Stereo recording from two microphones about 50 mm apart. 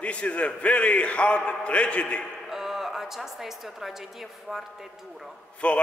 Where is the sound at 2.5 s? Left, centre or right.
Centre.